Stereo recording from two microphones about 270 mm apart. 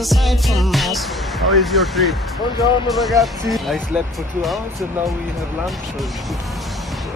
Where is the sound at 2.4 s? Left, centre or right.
Centre.